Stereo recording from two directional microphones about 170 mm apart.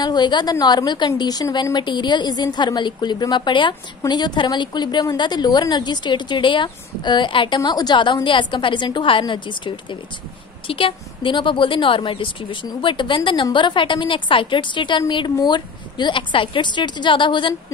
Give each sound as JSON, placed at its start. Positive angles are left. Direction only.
{"t": 0.0, "sound": "speech", "side_deg": 25}